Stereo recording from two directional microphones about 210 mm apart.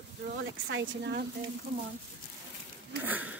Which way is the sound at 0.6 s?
65° right (ahead or behind).